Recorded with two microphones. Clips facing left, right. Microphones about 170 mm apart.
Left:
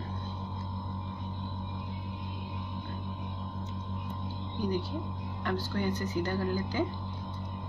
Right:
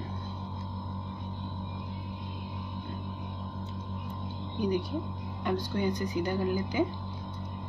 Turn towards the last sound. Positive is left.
turn(degrees=-15)  # may be behind; listen again after turning